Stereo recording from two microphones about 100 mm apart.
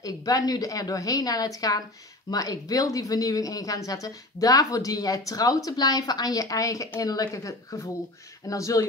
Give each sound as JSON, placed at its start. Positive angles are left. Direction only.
{"t": 0.0, "sound": "speech", "side_deg": 35}